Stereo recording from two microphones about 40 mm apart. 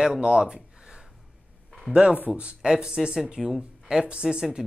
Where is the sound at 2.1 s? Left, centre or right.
Right.